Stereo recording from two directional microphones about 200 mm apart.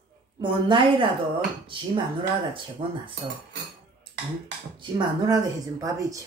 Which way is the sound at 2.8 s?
25° right (ahead or behind).